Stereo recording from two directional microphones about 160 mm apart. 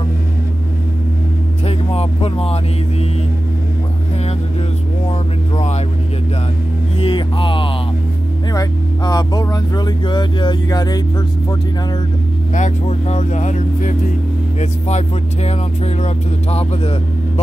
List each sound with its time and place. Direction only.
1.7 s speech: 40° left (ahead or behind)
7.0 s speech: 35° left (ahead or behind)
12.5 s speech: 45° left (ahead or behind)